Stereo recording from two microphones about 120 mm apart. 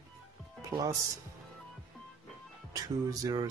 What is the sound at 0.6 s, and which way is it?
Speech, 30° right (ahead or behind).